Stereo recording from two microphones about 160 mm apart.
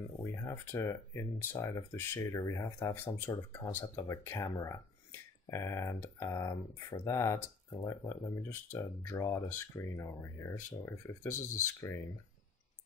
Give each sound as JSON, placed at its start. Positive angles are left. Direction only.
{"t": 0.2, "sound": "speech", "side_deg": 15}